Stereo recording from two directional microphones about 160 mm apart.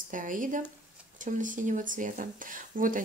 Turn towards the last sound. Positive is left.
turn(degrees=-60)  # may be behind; listen again after turning